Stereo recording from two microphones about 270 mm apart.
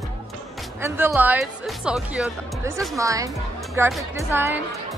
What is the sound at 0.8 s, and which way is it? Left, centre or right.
Speech, centre.